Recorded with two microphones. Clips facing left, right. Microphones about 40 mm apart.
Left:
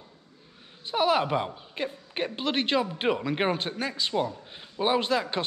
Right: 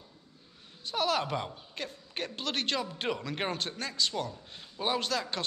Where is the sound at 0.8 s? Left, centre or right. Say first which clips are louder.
Left 6 dB; left.